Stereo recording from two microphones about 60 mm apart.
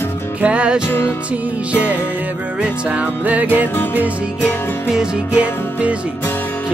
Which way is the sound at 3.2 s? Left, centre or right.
Right.